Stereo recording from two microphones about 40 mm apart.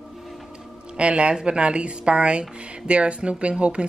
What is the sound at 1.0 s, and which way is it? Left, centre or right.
Speech, right.